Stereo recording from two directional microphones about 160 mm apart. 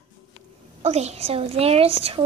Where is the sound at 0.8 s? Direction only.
40° right (ahead or behind).